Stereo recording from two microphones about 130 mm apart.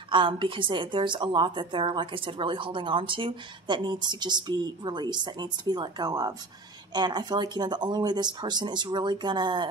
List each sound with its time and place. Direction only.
0.1 s a woman's voice: 40° right (ahead or behind)